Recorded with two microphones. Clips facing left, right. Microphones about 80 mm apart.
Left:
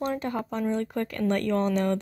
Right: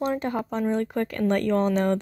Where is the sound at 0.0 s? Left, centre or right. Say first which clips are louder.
Right 3 dB; right.